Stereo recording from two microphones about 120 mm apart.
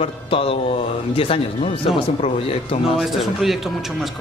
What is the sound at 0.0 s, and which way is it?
Speech, 50° left (ahead or behind).